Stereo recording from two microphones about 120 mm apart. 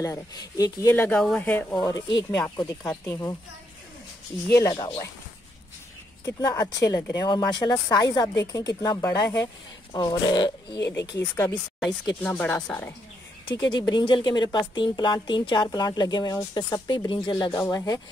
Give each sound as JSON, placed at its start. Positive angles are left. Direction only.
{"t": 0.0, "sound": "speech", "side_deg": 30}
{"t": 0.9, "sound": "speech", "side_deg": 20}
{"t": 1.8, "sound": "speech", "side_deg": 30}
{"t": 3.1, "sound": "speech", "side_deg": 20}
{"t": 4.7, "sound": "speech", "side_deg": 40}
{"t": 6.2, "sound": "speech", "side_deg": 30}
{"t": 10.9, "sound": "speech", "side_deg": 25}
{"t": 12.2, "sound": "speech", "side_deg": 15}
{"t": 13.6, "sound": "speech", "side_deg": 35}